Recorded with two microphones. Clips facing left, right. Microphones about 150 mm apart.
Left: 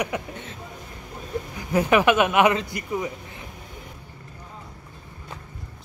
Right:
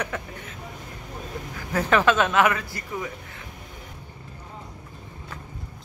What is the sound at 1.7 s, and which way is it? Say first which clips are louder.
Speech: left 2 dB; 15° left (ahead or behind).